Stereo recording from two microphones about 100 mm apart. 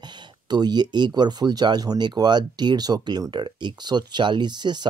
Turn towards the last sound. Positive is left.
turn(degrees=-45)  # may be behind; listen again after turning